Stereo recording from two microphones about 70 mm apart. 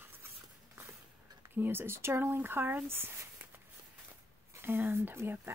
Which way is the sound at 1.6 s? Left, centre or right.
Right.